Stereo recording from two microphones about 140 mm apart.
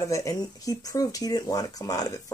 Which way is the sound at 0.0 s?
20° left (ahead or behind).